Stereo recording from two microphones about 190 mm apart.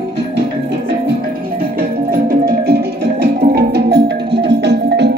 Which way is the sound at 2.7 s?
60° right (ahead or behind).